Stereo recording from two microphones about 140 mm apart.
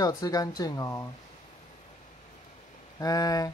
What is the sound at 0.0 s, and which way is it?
Speech, 25° left (ahead or behind).